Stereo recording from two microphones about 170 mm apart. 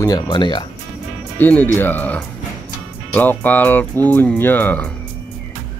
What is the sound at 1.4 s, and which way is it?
Speech, 10° left (ahead or behind).